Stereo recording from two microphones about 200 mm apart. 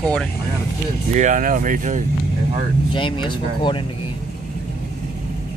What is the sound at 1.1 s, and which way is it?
Speech, 40° right (ahead or behind).